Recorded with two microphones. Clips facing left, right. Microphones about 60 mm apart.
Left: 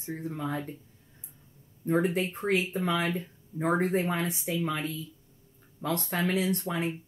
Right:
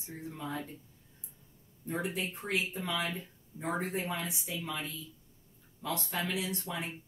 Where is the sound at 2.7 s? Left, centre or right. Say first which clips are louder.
Left 6 dB; left.